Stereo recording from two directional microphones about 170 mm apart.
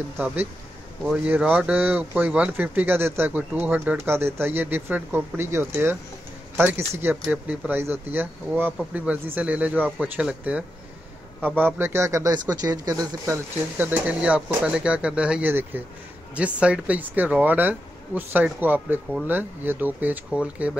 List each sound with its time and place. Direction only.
1.2 s speech: 10° right (ahead or behind)
13.7 s speech: 10° right (ahead or behind)